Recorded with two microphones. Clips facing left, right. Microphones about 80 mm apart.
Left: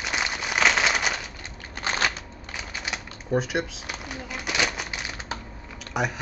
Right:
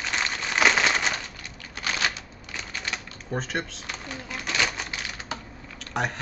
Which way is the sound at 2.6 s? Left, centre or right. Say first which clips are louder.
Even; centre.